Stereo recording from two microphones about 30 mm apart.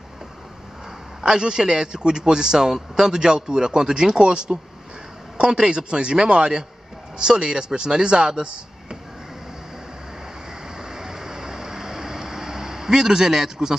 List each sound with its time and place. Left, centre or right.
1.2 s a man's voice: right
10.8 s vehicle: right